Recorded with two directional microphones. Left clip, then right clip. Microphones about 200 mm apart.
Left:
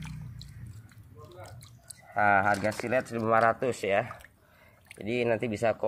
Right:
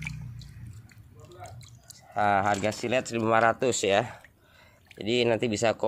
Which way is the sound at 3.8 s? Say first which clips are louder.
Right 3 dB; 35° right (ahead or behind).